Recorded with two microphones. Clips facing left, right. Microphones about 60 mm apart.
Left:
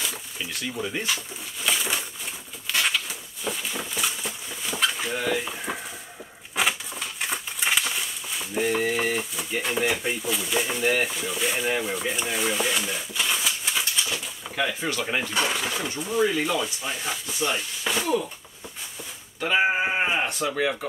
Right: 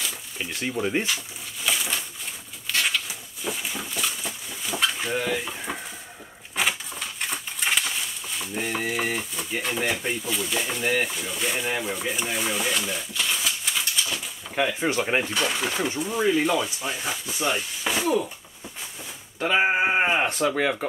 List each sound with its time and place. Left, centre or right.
0.4 s speech: right
1.0 s speech: centre
2.7 s patter: centre
3.4 s a sound: centre
5.1 s frying: centre
6.5 s a sound: centre
14.5 s speech: right
16.0 s frying: centre
16.5 s speech: centre
19.4 s speech: centre
19.8 s speech: right